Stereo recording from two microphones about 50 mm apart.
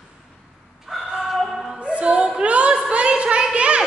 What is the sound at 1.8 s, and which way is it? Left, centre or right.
Music, right.